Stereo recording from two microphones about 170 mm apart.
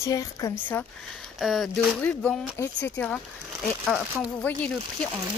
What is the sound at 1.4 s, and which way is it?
Speech, centre (ahead or behind).